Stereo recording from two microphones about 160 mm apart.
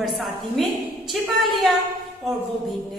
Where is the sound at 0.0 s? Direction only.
Centre (ahead or behind).